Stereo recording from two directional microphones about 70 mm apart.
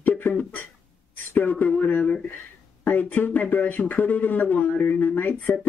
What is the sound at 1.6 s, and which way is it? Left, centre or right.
Speech, left.